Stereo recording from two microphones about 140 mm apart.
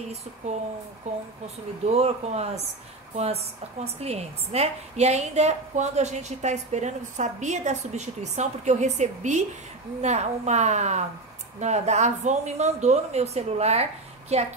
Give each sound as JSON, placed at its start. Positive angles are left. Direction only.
{"t": 1.1, "sound": "speech", "side_deg": -50}
{"t": 3.8, "sound": "a woman's voice", "side_deg": -50}